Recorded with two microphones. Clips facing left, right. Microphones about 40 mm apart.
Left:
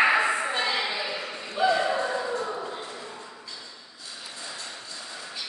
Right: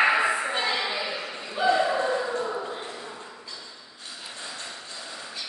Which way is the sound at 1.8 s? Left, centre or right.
Centre.